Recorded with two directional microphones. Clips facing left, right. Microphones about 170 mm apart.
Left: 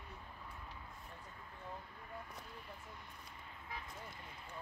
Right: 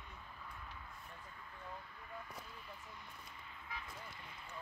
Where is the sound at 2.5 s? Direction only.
50° left (ahead or behind).